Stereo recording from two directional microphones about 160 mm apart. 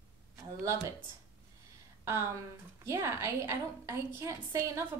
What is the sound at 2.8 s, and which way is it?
A woman's voice, 15° right (ahead or behind).